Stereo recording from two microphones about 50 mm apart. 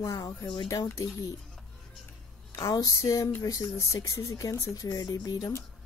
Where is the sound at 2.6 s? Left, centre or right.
Left.